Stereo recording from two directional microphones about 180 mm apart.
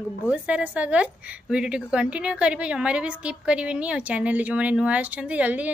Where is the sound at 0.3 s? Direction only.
5° right (ahead or behind).